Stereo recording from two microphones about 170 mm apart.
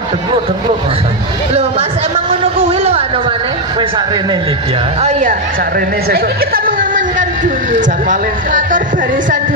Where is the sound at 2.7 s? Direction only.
35° right (ahead or behind).